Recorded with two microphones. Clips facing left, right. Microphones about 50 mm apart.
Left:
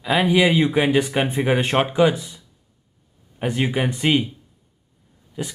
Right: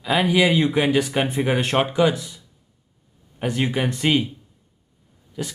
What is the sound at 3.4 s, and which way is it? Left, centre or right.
Speech, centre.